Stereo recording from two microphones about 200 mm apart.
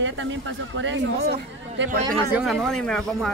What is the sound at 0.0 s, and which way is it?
Speech, 70° right (ahead or behind).